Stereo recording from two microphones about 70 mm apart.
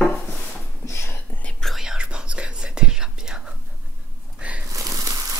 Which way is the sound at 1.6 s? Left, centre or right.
Centre.